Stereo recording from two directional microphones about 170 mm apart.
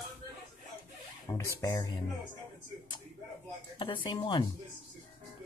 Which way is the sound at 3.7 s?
30° left (ahead or behind).